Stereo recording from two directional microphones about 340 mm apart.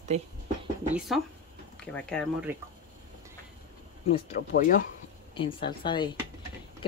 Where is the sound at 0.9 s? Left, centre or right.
Centre.